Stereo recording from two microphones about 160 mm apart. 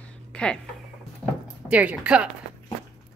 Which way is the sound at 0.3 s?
5° left (ahead or behind).